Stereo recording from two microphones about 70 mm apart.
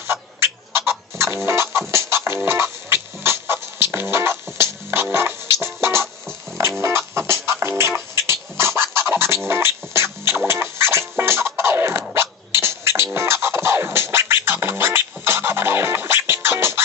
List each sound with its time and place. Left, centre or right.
0.0 s chicken: right
5.1 s music: right